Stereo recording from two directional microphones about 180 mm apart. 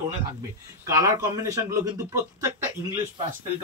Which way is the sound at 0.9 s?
20° right (ahead or behind).